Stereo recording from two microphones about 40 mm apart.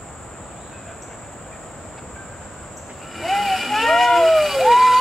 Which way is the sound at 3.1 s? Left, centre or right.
Centre.